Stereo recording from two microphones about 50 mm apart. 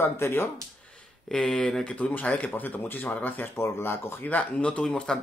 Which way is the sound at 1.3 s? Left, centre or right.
Centre.